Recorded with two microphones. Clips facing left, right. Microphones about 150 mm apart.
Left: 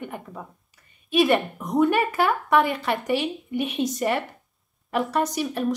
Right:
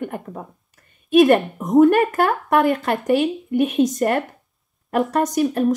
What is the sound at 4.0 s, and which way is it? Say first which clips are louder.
Speech: right 5 dB; 45° right (ahead or behind).